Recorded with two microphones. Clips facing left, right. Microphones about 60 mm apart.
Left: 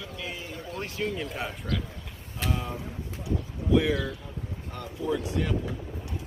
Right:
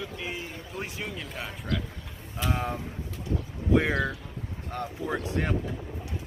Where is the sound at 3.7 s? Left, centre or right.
Right.